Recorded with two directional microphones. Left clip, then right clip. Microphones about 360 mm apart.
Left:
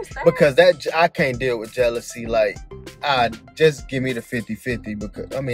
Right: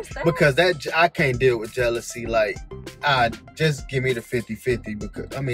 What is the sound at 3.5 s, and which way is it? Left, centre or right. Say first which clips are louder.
Speech: left 6 dB; centre.